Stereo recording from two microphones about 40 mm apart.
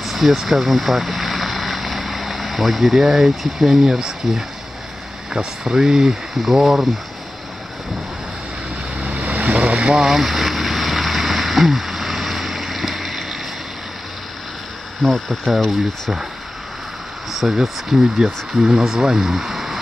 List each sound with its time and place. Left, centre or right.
0.0 s speech: centre
9.0 s vehicle: right
9.9 s a sound: centre
15.0 s speech: centre
17.5 s speech: centre